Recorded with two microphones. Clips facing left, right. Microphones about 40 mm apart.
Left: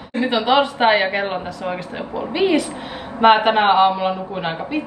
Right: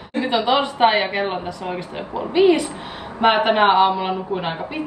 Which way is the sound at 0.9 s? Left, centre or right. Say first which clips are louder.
Left 3 dB; centre.